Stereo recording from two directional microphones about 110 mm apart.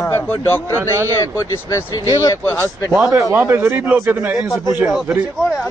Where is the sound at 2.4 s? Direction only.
20° left (ahead or behind).